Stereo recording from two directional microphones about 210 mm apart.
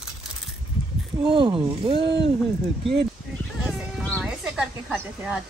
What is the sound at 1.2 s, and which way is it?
Speech, 25° right (ahead or behind).